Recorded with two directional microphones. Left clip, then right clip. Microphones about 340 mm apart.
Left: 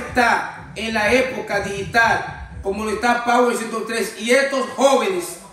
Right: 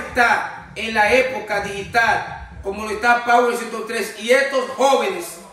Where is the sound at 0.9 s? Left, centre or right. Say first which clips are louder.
Right 2 dB; centre.